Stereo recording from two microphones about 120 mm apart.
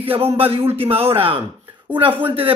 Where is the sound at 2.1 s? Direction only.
15° right (ahead or behind).